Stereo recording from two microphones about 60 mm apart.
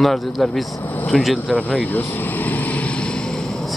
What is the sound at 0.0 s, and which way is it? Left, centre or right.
Speech, centre.